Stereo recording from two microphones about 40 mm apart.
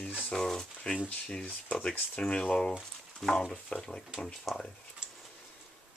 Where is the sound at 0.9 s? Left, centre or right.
Left.